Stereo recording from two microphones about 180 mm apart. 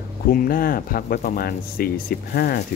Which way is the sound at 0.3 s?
55° left (ahead or behind).